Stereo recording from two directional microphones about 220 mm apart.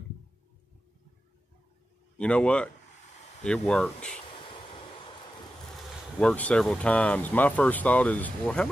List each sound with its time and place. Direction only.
2.1 s speech: 5° left (ahead or behind)
4.3 s vehicle: 25° left (ahead or behind)
6.1 s speech: 5° left (ahead or behind)